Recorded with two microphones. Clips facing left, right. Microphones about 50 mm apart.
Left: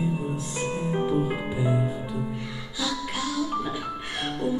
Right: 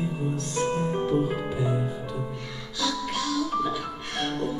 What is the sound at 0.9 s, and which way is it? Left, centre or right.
Music, centre.